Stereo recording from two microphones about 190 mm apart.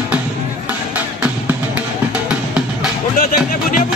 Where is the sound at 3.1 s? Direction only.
50° left (ahead or behind).